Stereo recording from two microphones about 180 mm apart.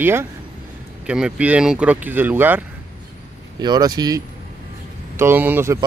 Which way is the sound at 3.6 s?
20° right (ahead or behind).